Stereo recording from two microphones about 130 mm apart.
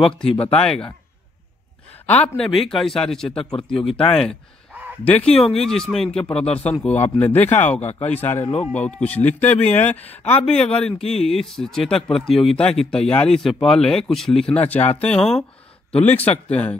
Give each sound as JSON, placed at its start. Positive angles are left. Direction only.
{"t": 0.4, "sound": "speech", "side_deg": 10}
{"t": 2.0, "sound": "speech", "side_deg": 10}